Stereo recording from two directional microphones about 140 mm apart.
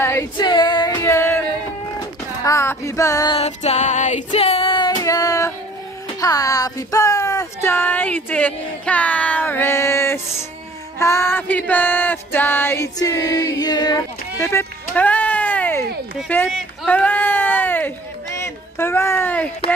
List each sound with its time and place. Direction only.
0.0 s female singing: 20° left (ahead or behind)
0.4 s female singing: 30° left (ahead or behind)
2.0 s speech: 20° left (ahead or behind)
3.3 s female singing: 50° left (ahead or behind); by 5.5 s 25° left (ahead or behind)
6.2 s speech: 25° left (ahead or behind)
11.0 s music: 20° left (ahead or behind)
16.3 s a sound: 10° left (ahead or behind)